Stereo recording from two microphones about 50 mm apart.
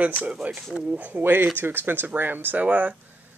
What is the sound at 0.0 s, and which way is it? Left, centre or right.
Speech, right.